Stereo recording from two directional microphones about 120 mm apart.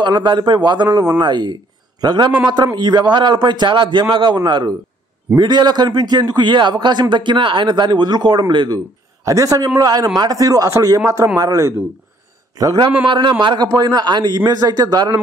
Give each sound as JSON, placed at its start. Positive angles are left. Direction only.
{"t": 0.0, "sound": "speech", "side_deg": -40}
{"t": 9.2, "sound": "a man's voice", "side_deg": -30}
{"t": 13.0, "sound": "speech", "side_deg": -40}